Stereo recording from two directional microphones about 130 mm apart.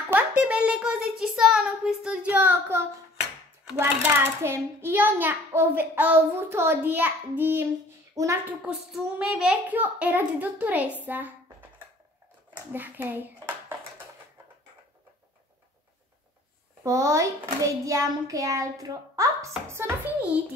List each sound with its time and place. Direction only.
0.1 s a child's voice: 10° right (ahead or behind)
8.2 s a child's voice: 25° right (ahead or behind)
8.9 s a child's voice: 5° right (ahead or behind)
12.7 s a child's voice: 15° right (ahead or behind)
16.8 s a child's voice: 25° right (ahead or behind)